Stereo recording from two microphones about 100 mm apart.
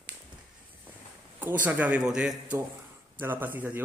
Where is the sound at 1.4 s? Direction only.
15° right (ahead or behind).